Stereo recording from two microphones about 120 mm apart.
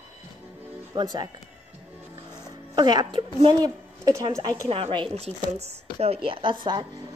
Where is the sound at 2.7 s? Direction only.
35° right (ahead or behind).